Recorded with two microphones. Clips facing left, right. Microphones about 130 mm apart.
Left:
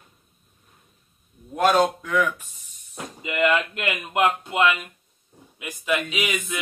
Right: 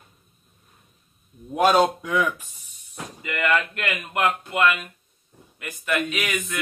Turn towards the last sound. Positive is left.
turn(degrees=15)  # may be behind; listen again after turning